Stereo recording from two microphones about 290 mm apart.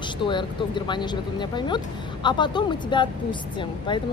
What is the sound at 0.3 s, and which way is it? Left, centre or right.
Speech, centre.